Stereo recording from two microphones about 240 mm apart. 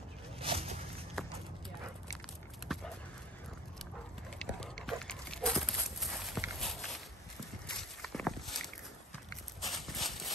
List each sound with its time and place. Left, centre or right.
0.4 s a sound: right
1.2 s clip-clop: centre
2.7 s a sound: centre
4.4 s dog: centre
5.9 s clip-clop: centre
6.6 s walk: centre
9.6 s clip-clop: centre